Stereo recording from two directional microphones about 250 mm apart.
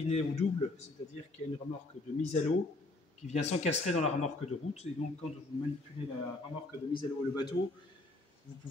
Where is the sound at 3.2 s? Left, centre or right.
Left.